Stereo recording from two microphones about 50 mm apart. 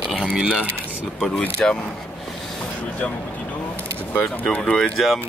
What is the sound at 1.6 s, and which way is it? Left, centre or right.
Speech, left.